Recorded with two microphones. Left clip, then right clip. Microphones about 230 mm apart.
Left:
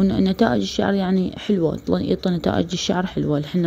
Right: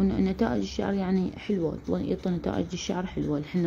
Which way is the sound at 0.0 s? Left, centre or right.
Left.